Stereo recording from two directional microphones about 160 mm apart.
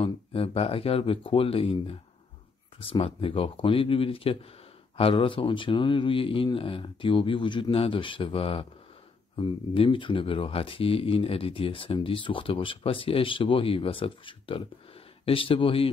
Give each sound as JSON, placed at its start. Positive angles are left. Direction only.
{"t": 0.0, "sound": "speech", "side_deg": 35}